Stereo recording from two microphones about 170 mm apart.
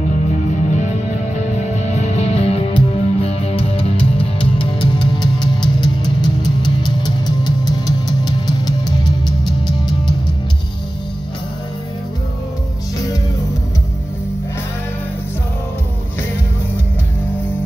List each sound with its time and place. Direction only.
0.7 s music: 45° left (ahead or behind); by 10.1 s 25° left (ahead or behind)